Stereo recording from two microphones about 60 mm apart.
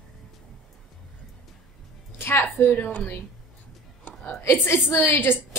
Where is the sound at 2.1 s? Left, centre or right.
Left.